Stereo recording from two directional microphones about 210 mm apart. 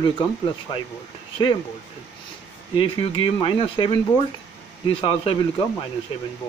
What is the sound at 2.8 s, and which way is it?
Speech, 25° left (ahead or behind).